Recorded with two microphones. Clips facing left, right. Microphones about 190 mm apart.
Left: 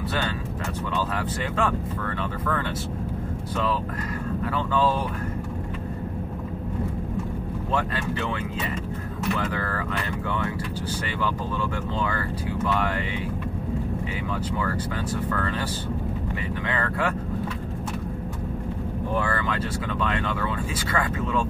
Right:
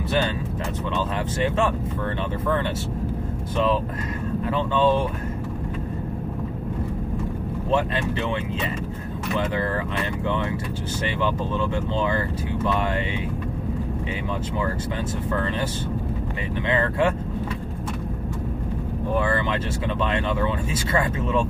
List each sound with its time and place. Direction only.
1.1 s speech: 25° right (ahead or behind)
4.5 s speech: 25° right (ahead or behind)
15.2 s speech: 20° right (ahead or behind)
16.6 s speech: 25° right (ahead or behind)
19.1 s speech: 20° right (ahead or behind)